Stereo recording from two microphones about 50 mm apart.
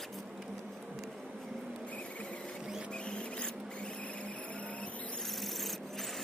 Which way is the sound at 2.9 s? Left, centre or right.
Centre.